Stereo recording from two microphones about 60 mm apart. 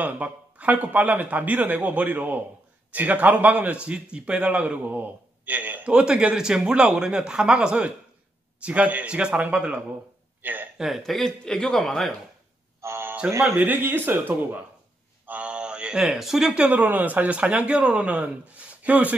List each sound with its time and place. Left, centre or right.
0.0 s a man's voice: right
5.9 s a man's voice: centre
10.4 s a sound: right
10.8 s speech: centre
13.2 s a man's voice: centre
13.6 s speech: right
15.2 s a sound: right; by 16.6 s centre
16.6 s a man's voice: right